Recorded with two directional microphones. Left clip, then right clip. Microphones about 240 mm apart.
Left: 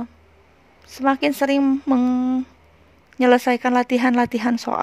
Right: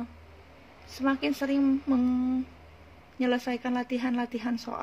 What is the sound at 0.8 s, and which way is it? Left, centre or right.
Speech, left.